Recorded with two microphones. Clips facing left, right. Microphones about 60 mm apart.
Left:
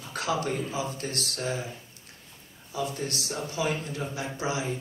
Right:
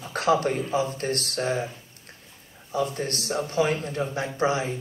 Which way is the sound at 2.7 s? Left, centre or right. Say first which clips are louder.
Right 5 dB; right.